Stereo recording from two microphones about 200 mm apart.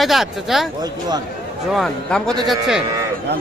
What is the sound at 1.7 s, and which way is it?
Speech, centre (ahead or behind).